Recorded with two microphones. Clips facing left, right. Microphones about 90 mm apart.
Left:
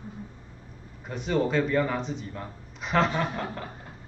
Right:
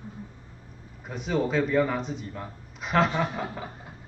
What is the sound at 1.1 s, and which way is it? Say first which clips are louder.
Speech: left 1 dB; centre (ahead or behind).